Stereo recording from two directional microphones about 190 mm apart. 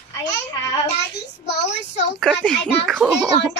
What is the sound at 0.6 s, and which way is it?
Speech, 20° left (ahead or behind).